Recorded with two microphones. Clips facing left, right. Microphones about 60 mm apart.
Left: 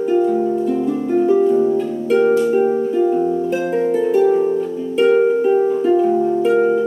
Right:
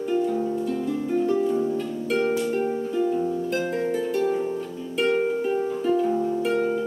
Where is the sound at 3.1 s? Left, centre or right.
Left.